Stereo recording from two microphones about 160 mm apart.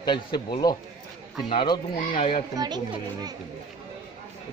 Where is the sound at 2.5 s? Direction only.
25° right (ahead or behind).